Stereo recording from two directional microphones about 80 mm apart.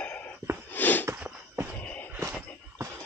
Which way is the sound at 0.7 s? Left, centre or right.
Left.